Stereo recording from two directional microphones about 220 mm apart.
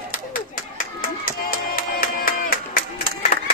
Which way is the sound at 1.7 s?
40° left (ahead or behind).